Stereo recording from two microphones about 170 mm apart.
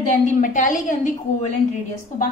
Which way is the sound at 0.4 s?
50° left (ahead or behind).